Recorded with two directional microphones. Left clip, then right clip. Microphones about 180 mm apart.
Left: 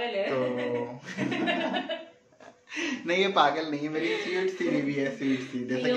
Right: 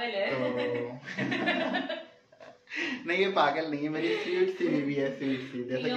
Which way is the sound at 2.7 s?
25° left (ahead or behind).